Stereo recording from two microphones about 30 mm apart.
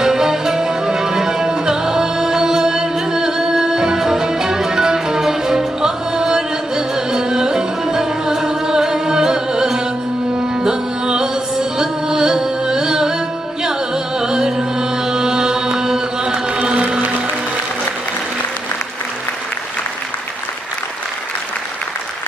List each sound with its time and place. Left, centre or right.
0.0 s music: centre
14.2 s music: right
16.5 s a sound: right